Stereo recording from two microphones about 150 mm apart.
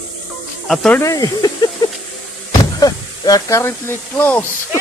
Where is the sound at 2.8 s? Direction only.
25° left (ahead or behind).